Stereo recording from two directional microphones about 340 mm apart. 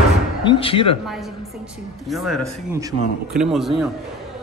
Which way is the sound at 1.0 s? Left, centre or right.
Centre.